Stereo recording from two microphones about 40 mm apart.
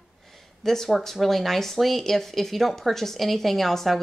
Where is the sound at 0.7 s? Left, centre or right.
Centre.